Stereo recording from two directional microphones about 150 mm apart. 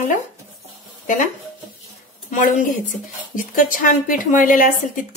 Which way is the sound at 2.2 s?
60° left (ahead or behind).